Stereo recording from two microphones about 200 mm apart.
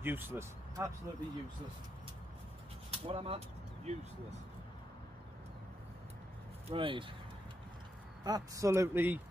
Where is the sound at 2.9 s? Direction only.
25° right (ahead or behind).